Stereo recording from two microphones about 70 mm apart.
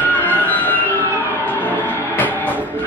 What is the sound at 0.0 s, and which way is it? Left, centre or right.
Music, left.